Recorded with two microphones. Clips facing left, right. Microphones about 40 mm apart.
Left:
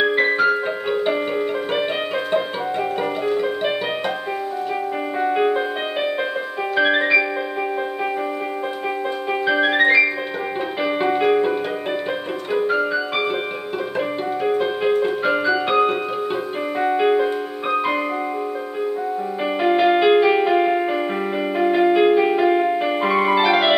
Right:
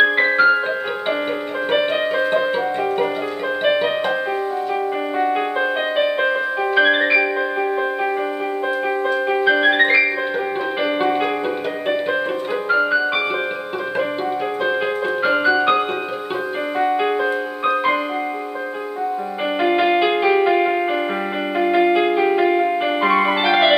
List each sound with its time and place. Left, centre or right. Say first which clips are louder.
0.0 s music: right 3 dB; centre
5.2 s music: left 2 dB; centre
6.7 s music: right 1 dB; centre
9.4 s piano: right 1 dB; centre
10.8 s music: even; centre
12.6 s music: right 5 dB; centre
15.2 s music: right 3 dB; centre
19.8 s music: left 5 dB; centre